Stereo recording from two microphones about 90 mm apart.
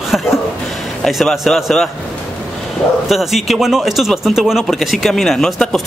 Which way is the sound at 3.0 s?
Centre (ahead or behind).